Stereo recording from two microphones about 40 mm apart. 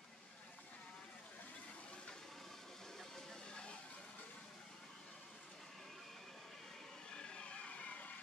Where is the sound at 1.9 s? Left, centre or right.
Centre.